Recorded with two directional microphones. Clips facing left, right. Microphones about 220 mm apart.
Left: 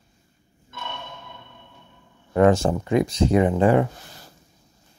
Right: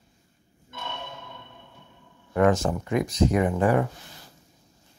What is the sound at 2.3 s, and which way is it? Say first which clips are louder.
Speech: left 4 dB; 30° left (ahead or behind).